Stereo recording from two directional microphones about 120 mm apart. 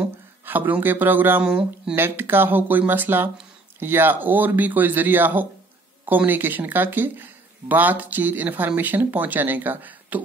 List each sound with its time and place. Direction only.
0.5 s speech: 15° right (ahead or behind)